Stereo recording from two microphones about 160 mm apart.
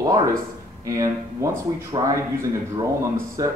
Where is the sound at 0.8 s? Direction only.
20° right (ahead or behind).